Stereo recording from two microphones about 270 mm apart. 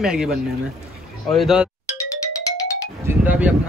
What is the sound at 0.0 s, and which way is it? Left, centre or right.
Speech, centre.